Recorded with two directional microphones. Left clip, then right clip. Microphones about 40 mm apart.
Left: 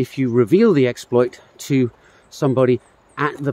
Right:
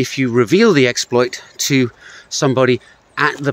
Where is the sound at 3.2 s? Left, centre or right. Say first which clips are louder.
Right 6 dB; left.